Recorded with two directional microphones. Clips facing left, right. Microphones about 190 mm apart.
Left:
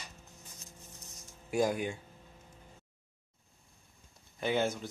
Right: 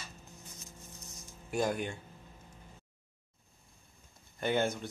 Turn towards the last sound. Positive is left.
turn(degrees=0)  # may be behind; listen again after turning